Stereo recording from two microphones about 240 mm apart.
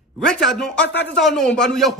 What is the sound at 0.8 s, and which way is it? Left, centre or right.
Speech, left.